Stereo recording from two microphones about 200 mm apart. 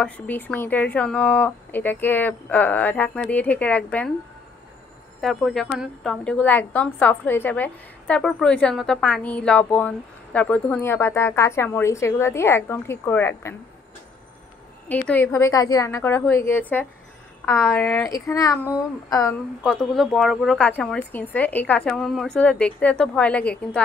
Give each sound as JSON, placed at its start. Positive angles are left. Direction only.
{"t": 0.0, "sound": "a woman's voice", "side_deg": 10}
{"t": 5.2, "sound": "a woman's voice", "side_deg": 0}
{"t": 14.9, "sound": "a woman's voice", "side_deg": 10}
{"t": 19.6, "sound": "a woman's voice", "side_deg": 5}